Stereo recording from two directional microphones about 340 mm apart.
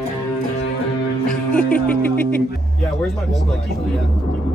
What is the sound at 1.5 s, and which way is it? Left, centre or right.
Speech, centre.